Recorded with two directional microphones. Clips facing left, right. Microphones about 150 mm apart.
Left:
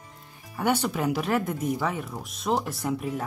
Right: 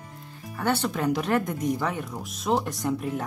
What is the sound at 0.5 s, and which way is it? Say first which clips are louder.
Speech: left 1 dB; 10° left (ahead or behind).